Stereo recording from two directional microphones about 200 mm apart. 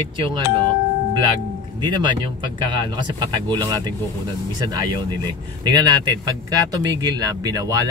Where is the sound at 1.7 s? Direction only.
25° right (ahead or behind).